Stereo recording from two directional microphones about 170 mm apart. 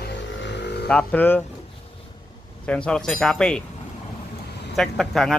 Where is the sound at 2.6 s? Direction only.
5° left (ahead or behind).